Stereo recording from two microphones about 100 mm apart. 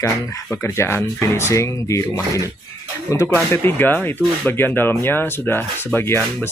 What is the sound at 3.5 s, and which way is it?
Speech, 20° left (ahead or behind).